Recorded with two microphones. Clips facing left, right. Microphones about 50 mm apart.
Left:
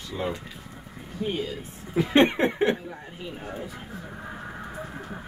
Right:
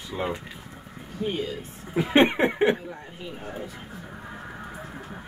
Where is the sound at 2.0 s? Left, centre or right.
Centre.